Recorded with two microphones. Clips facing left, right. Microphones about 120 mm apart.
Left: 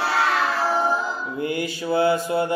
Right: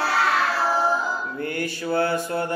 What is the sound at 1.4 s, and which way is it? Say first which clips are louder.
Mantra: left 2 dB; 15° left (ahead or behind).